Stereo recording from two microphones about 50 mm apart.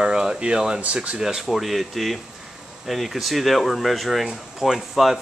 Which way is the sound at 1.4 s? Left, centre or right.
Centre.